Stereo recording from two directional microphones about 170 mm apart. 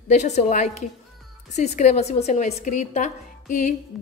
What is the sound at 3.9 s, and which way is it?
Speech, centre (ahead or behind).